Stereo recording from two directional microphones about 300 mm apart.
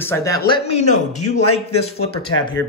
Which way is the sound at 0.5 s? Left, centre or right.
Centre.